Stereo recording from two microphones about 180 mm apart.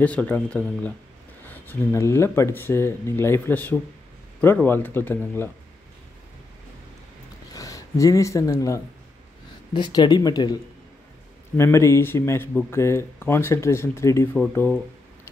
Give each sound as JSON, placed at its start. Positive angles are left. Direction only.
{"t": 0.0, "sound": "speech", "side_deg": 10}
{"t": 7.5, "sound": "speech", "side_deg": 20}